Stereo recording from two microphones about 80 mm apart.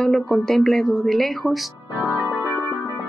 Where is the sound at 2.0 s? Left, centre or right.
Left.